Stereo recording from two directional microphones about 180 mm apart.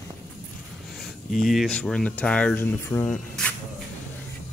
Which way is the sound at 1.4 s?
Centre (ahead or behind).